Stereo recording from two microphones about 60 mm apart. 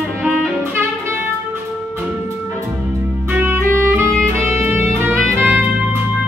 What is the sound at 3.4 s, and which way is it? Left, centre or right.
Music, right.